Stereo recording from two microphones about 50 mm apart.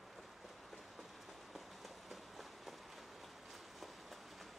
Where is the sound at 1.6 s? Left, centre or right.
Centre.